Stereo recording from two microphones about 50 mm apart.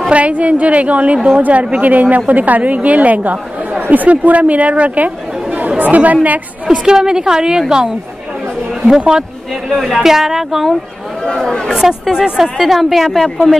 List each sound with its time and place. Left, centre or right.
0.1 s a woman's voice: right
6.8 s a woman's voice: centre
11.2 s speech: centre
11.7 s speech: centre